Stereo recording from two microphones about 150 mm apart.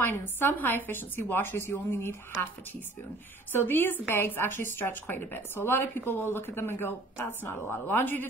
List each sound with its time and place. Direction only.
0.0 s a woman's voice: 15° left (ahead or behind)